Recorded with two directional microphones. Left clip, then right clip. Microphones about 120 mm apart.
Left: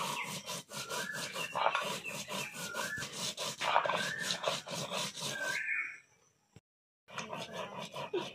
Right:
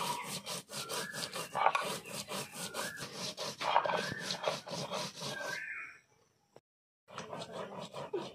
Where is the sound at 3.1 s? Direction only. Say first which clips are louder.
Left 2 dB; 5° right (ahead or behind).